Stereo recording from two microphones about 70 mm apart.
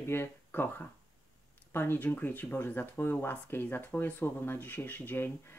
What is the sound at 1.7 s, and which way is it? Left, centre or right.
Speech, left.